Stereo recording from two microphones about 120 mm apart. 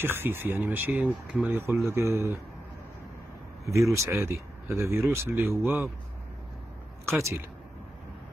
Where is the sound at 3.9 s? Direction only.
20° right (ahead or behind).